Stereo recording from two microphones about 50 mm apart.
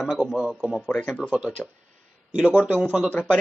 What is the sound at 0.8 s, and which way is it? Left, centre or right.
Speech, left.